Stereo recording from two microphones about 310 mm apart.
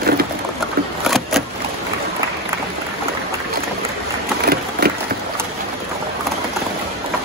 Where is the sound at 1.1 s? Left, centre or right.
Centre.